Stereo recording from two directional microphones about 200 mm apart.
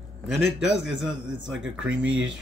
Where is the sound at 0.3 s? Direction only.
Centre (ahead or behind).